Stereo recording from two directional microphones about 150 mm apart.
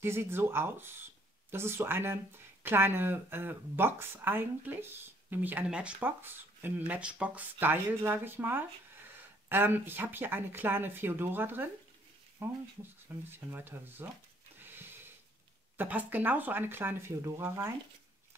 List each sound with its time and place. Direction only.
0.0 s speech: 15° right (ahead or behind)
14.6 s a sound: 15° right (ahead or behind)
15.8 s speech: 10° right (ahead or behind)